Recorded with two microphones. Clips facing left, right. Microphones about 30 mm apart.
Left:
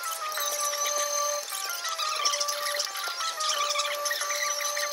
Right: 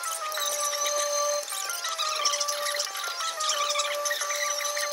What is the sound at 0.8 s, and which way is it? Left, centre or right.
Music, right.